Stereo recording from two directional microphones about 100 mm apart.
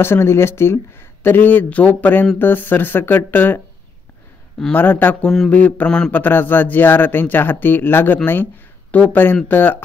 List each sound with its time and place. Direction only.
0.0 s speech: 25° left (ahead or behind)
4.7 s mantra: 20° left (ahead or behind)
6.1 s speech: 20° left (ahead or behind)